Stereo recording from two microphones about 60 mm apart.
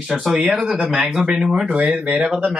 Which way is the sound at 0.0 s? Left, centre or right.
Centre.